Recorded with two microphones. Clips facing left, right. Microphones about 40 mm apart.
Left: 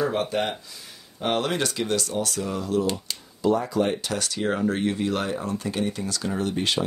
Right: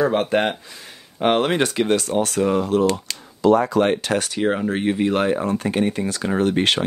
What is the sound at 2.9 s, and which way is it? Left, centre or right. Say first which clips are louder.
Speech: right 5 dB; right.